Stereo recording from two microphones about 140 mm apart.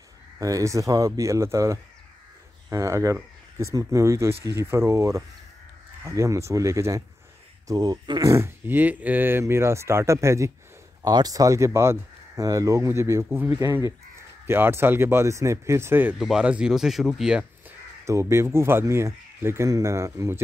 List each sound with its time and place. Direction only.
0.4 s speech: 25° right (ahead or behind)
16.2 s speech: 5° right (ahead or behind)
18.0 s speech: 20° right (ahead or behind)